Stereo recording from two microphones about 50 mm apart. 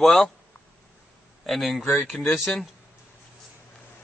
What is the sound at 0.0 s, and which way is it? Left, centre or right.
Speech, centre.